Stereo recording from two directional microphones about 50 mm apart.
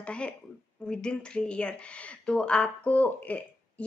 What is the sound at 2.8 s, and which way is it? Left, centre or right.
Speech, left.